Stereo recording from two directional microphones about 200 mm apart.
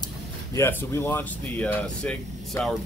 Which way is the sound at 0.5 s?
10° left (ahead or behind).